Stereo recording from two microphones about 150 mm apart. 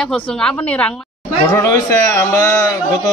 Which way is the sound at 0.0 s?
5° left (ahead or behind).